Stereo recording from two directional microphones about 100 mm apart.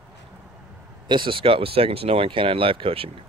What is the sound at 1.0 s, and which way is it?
Speech, 55° right (ahead or behind).